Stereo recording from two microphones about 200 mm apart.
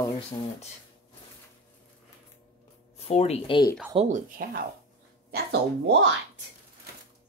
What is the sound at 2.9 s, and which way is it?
Speech, 30° left (ahead or behind).